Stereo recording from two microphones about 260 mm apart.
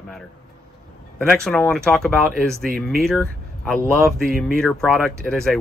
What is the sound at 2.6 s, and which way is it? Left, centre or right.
Speech, right.